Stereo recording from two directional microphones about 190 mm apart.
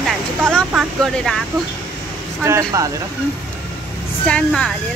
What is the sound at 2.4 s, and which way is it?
Speech, 15° right (ahead or behind).